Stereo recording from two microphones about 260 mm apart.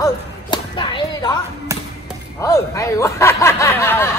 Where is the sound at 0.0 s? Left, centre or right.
Centre.